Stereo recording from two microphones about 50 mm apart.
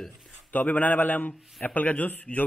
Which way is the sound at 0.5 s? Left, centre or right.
Left.